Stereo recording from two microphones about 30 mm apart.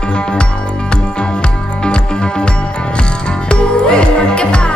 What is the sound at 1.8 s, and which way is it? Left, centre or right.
Music, left.